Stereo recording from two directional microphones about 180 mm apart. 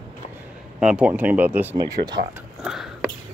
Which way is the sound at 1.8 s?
20° right (ahead or behind).